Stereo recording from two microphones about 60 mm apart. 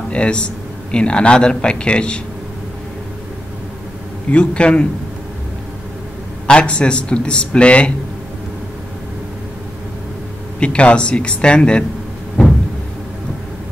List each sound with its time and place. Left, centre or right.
0.1 s a man's voice: centre
4.3 s a man's voice: centre
6.4 s a man's voice: centre
10.6 s a man's voice: centre
12.4 s a sound: centre